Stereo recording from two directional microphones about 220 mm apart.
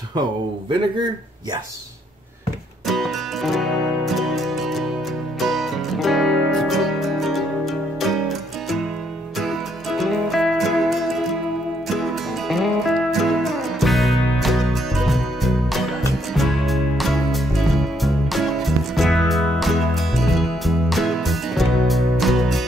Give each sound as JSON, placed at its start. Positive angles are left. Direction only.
{"t": 0.1, "sound": "speech", "side_deg": -20}
{"t": 2.9, "sound": "music", "side_deg": 0}
{"t": 9.4, "sound": "music", "side_deg": 0}